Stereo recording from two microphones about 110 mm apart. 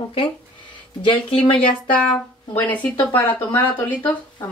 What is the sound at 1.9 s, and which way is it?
Speech, 10° left (ahead or behind).